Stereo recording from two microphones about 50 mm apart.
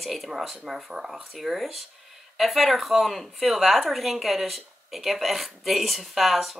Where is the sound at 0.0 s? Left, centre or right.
Centre.